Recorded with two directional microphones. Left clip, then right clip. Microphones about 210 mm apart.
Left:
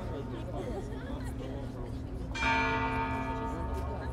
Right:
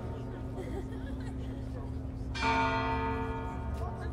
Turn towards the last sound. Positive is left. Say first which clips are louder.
# even
turn(degrees=-15)  # may be behind; listen again after turning